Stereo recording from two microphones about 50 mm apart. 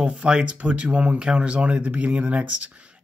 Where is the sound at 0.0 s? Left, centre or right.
Centre.